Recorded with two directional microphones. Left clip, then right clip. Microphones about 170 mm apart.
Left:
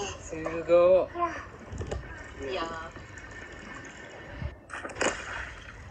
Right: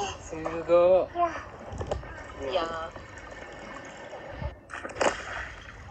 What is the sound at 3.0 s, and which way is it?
Fill, 15° right (ahead or behind).